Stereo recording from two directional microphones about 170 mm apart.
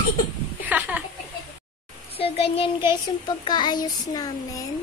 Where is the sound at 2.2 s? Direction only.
35° left (ahead or behind).